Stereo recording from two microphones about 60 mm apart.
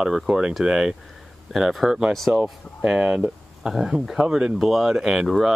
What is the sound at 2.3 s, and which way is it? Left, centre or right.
Speech, right.